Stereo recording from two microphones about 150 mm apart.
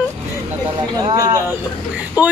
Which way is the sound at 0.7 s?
25° right (ahead or behind).